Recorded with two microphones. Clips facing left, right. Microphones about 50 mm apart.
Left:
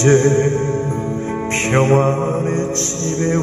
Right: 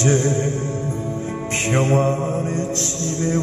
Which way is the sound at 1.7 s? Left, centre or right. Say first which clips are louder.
Left 4 dB; left.